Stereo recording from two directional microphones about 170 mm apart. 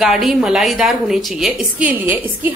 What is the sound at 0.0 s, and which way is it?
A woman's voice, centre (ahead or behind).